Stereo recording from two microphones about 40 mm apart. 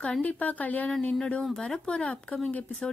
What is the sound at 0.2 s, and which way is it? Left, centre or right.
Speech, left.